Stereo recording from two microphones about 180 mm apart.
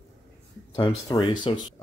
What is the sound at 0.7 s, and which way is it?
Speech, 20° left (ahead or behind).